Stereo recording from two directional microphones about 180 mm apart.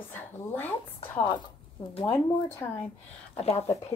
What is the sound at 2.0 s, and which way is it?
Speech, 30° left (ahead or behind).